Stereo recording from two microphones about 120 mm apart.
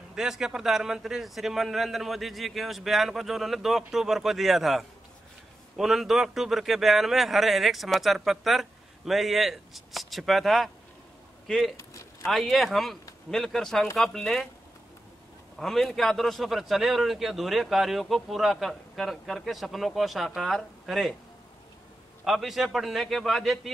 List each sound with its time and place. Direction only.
0.1 s a man's voice: 5° right (ahead or behind)
11.7 s a sound: 25° left (ahead or behind)
12.3 s a man's voice: centre (ahead or behind)
15.6 s a man's voice: 5° left (ahead or behind)
22.2 s a man's voice: centre (ahead or behind)